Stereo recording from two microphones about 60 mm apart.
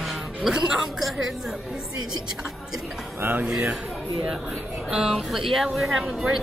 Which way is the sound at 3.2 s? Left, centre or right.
Right.